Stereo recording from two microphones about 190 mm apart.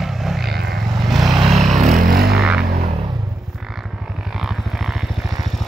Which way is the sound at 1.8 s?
45° right (ahead or behind).